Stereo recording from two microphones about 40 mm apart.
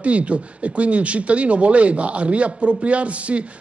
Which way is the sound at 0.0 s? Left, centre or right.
Right.